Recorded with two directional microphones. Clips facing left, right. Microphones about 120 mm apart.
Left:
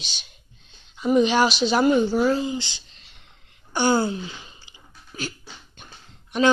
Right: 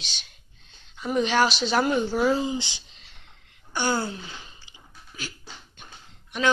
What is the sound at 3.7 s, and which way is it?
Speech, 25° left (ahead or behind).